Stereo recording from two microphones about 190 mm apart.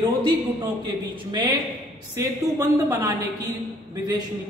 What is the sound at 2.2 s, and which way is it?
Speech, 15° right (ahead or behind).